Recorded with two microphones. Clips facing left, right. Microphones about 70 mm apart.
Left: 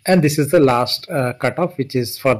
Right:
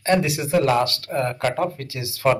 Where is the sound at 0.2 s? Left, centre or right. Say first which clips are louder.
Left 8 dB; left.